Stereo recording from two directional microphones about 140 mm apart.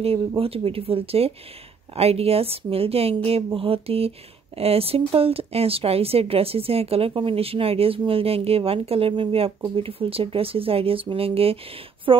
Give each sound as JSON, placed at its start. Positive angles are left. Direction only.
{"t": 0.4, "sound": "a woman's voice", "side_deg": -40}